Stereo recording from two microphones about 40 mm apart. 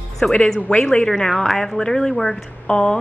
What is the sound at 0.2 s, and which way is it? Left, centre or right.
Speech, left.